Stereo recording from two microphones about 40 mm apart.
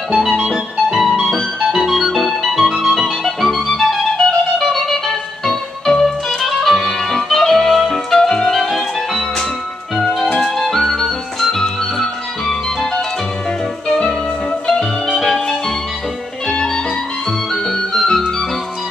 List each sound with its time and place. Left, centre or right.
0.4 s music: centre
1.2 s music: centre
9.9 s music: centre; by 14.1 s left
15.1 s music: centre
16.4 s music: centre